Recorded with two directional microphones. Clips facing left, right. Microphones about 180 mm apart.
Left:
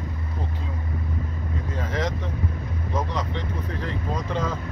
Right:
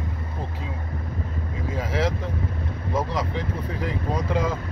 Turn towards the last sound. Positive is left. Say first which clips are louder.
# right 3 dB
turn(degrees=-10)  # may be behind; listen again after turning